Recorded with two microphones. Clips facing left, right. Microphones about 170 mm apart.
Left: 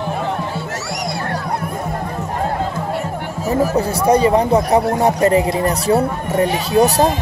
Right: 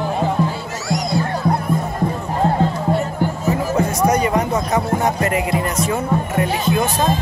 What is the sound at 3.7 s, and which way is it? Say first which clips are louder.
A man's voice: even; 30° left (ahead or behind).